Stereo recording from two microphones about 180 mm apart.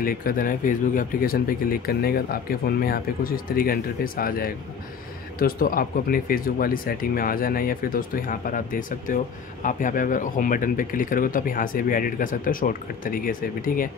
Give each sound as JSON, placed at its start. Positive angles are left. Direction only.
{"t": 0.0, "sound": "speech", "side_deg": 55}